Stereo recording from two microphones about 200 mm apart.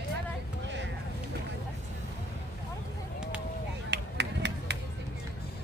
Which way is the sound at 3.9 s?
60° right (ahead or behind).